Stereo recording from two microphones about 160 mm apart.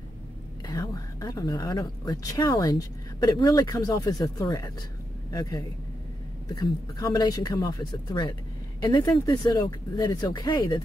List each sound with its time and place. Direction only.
0.7 s speech: 20° left (ahead or behind)